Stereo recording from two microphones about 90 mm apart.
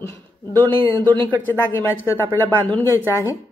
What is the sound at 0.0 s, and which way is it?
Speech, 25° left (ahead or behind).